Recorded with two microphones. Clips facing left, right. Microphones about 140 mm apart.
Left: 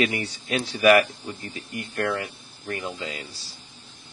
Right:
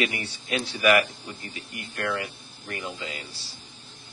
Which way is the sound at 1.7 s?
25° left (ahead or behind).